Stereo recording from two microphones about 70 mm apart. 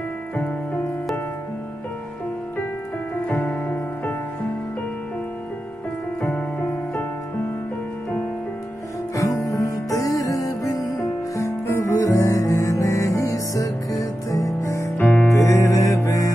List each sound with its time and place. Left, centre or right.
3.3 s music: centre
6.2 s music: left
9.1 s music: left
11.3 s music: left
15.0 s music: left
15.3 s music: left